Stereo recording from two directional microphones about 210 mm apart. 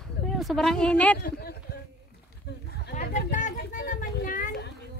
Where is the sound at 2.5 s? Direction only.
50° left (ahead or behind).